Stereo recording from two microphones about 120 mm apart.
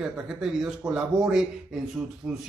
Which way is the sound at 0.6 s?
5° right (ahead or behind).